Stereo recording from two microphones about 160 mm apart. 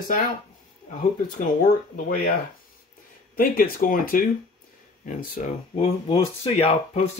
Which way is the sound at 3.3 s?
65° left (ahead or behind).